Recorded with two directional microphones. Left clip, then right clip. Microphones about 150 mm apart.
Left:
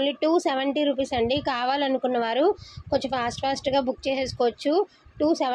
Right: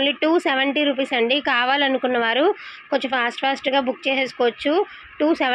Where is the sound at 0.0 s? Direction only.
Centre (ahead or behind).